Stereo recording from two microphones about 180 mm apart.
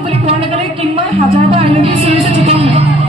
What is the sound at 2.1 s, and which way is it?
Music, 30° right (ahead or behind).